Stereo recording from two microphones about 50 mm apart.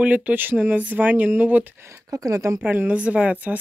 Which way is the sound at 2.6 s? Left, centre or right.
Right.